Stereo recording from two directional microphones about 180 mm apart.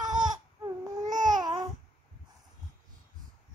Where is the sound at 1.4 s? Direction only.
25° right (ahead or behind).